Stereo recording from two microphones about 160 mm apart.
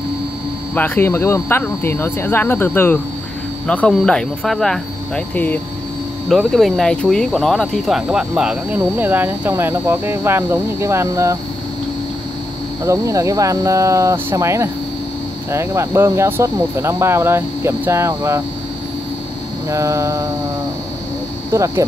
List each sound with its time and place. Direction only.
0.7 s speech: 15° left (ahead or behind); by 11.3 s 15° right (ahead or behind)
12.8 s speech: 20° right (ahead or behind)
19.7 s speech: 20° right (ahead or behind)
21.5 s speech: 20° right (ahead or behind)